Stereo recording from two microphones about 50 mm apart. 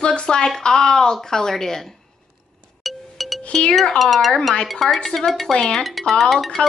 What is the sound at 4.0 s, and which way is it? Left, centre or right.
Speech, centre.